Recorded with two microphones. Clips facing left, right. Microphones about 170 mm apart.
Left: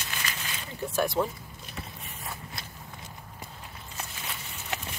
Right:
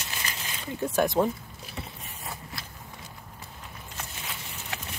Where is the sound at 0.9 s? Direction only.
20° right (ahead or behind).